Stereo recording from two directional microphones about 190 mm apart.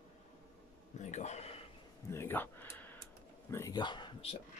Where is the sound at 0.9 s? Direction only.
35° left (ahead or behind).